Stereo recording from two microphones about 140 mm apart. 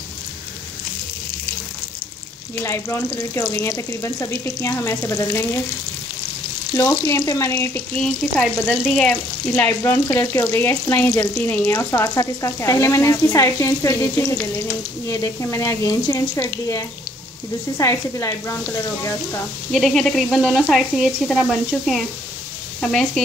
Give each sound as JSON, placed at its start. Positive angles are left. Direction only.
{"t": 2.6, "sound": "speech", "side_deg": 20}
{"t": 6.7, "sound": "frying", "side_deg": 20}
{"t": 12.4, "sound": "speech", "side_deg": 20}
{"t": 19.7, "sound": "speech", "side_deg": 0}